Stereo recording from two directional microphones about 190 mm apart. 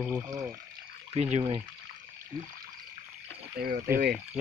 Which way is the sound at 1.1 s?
35° right (ahead or behind).